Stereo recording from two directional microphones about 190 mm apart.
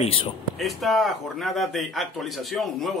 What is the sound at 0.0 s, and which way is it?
Speech, 30° left (ahead or behind).